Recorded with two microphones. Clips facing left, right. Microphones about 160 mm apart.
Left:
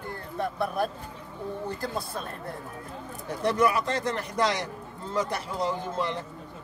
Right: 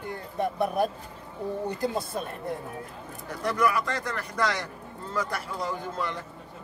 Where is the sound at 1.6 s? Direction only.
20° right (ahead or behind).